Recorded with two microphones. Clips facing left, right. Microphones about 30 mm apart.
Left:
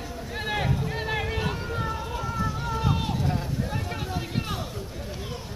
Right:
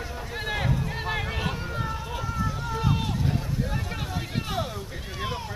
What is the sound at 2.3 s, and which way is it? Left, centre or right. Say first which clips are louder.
Run: left 1 dB; centre.